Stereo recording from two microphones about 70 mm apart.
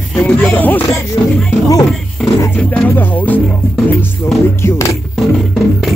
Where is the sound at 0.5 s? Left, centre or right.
Left.